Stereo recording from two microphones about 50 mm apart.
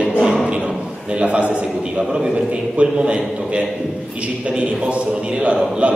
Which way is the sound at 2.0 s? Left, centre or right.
Centre.